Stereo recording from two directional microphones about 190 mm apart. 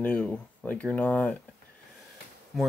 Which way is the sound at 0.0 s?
10° left (ahead or behind).